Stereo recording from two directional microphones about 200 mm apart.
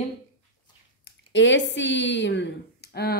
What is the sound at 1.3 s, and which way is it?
A woman's voice, 65° left (ahead or behind).